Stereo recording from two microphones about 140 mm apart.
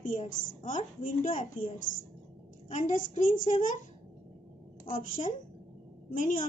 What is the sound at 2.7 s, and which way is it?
A woman's voice, 60° left (ahead or behind).